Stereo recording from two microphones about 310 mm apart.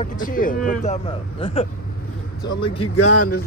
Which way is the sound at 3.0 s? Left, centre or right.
Left.